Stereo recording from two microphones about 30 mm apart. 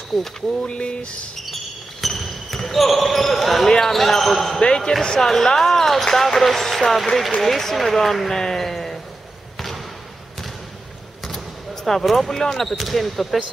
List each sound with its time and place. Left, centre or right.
0.1 s speech: centre
0.6 s speech: left
1.4 s basketball bounce: centre
3.6 s speech: left
3.9 s speech: centre
4.6 s speech: left
5.2 s speech: centre
5.7 s speech: centre
11.2 s basketball bounce: centre
12.3 s speech: centre
12.7 s speech: centre